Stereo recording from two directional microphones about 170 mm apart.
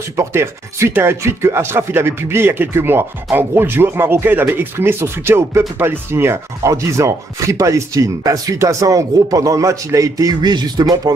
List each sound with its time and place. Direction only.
0.1 s speech: 15° right (ahead or behind)